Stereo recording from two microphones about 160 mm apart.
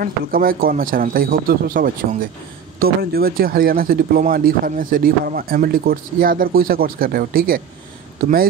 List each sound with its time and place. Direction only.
0.0 s speech: 65° right (ahead or behind)